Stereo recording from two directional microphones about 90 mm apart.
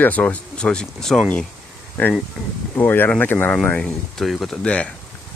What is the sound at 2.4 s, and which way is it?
Speech, centre (ahead or behind).